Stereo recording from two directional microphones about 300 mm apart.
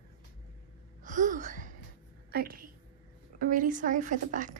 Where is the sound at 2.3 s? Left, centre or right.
Right.